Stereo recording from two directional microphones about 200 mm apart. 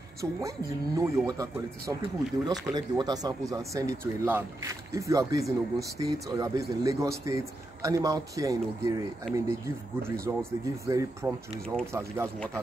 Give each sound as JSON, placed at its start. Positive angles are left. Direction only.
{"t": 0.2, "sound": "speech", "side_deg": -15}
{"t": 10.3, "sound": "speech", "side_deg": -15}